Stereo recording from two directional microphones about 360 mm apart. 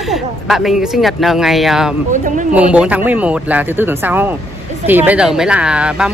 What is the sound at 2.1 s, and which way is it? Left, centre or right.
Speech, right.